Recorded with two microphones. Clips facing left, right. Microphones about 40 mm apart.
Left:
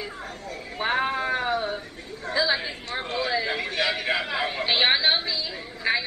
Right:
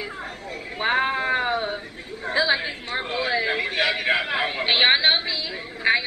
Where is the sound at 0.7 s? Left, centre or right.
Right.